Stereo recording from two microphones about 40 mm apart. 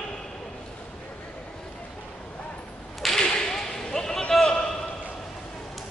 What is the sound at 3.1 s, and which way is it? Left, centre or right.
Whip, centre.